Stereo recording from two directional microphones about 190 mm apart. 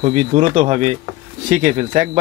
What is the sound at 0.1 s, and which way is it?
Speech, 40° right (ahead or behind).